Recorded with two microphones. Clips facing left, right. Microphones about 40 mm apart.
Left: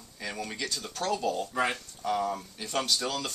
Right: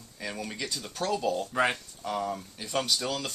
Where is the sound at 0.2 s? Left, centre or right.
Centre.